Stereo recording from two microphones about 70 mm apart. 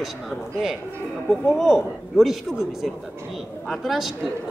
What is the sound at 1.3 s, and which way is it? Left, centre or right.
A man's voice, centre.